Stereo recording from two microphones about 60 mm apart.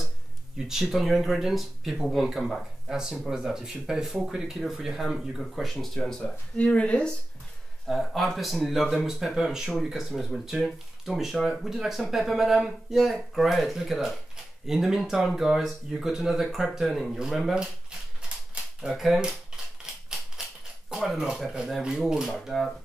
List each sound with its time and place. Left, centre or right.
0.8 s speech: centre
6.2 s speech: centre
7.8 s speech: centre
18.9 s speech: centre
19.9 s a sound: centre
21.0 s speech: centre
22.3 s speech: centre